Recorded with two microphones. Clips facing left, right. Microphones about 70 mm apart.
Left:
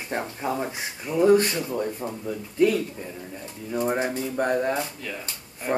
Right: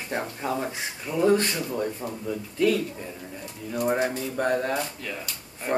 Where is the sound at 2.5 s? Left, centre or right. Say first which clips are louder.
Left 2 dB; left.